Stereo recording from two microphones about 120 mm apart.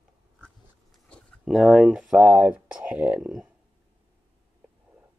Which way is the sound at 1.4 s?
5° right (ahead or behind).